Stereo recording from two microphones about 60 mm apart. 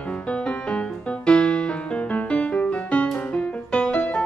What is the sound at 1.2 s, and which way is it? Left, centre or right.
Music, centre.